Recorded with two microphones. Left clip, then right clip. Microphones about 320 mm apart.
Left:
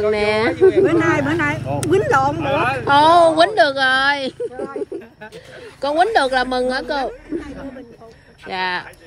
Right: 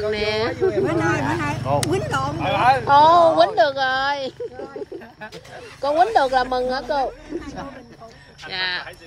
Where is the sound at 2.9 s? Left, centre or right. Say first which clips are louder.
Left 3 dB; left.